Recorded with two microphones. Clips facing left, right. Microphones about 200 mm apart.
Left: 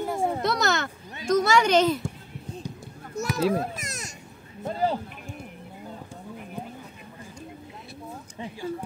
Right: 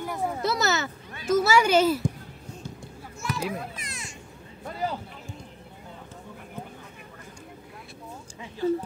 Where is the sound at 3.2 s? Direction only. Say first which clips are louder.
Left 5 dB; 40° left (ahead or behind).